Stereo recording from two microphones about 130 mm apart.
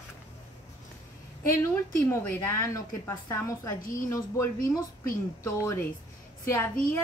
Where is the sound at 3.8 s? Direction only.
90° left.